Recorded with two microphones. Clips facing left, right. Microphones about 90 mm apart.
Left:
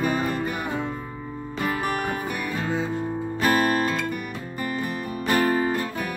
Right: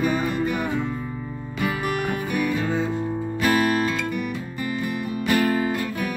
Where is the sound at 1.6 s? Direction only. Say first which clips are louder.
Right 1 dB; 40° left (ahead or behind).